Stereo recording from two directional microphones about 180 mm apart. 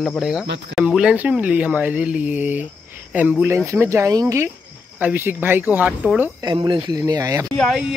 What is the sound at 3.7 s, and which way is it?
Speech, 15° right (ahead or behind).